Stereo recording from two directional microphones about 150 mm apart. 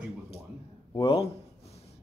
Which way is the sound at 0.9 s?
40° left (ahead or behind).